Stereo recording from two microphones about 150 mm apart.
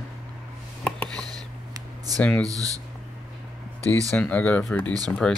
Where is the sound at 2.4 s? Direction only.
25° right (ahead or behind).